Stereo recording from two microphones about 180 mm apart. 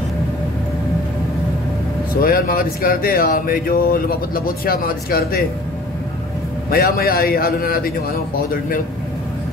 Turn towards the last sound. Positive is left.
turn(degrees=55)  # may be behind; listen again after turning